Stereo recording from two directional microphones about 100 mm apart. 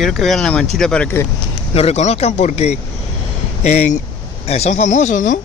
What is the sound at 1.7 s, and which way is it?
Speech, 90° left.